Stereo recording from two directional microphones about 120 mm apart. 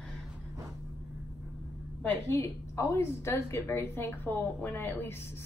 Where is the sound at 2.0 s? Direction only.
25° left (ahead or behind).